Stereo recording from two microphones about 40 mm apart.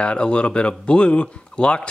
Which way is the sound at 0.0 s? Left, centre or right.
Left.